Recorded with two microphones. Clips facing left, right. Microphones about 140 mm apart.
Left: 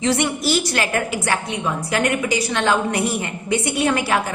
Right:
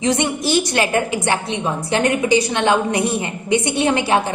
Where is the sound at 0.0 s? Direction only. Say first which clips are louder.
Right 1 dB; 20° right (ahead or behind).